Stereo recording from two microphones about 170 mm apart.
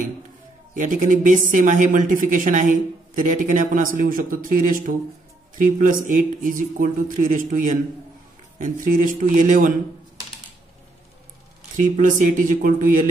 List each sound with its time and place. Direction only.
0.7 s speech: 50° right (ahead or behind)
11.8 s speech: 50° right (ahead or behind)